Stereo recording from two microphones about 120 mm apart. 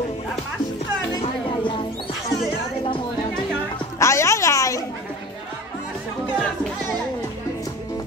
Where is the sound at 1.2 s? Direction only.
45° left (ahead or behind).